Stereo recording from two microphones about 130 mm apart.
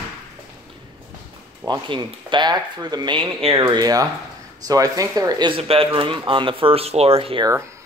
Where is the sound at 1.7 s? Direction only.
35° right (ahead or behind).